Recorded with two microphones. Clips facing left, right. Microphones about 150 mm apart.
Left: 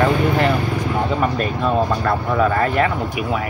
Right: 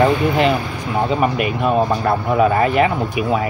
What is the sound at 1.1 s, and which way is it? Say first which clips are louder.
Speech: right 2 dB; 15° right (ahead or behind).